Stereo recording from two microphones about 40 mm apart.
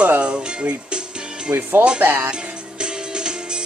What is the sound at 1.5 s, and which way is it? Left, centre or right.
Speech, right.